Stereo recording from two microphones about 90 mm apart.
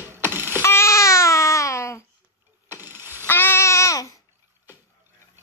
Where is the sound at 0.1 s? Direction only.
25° right (ahead or behind).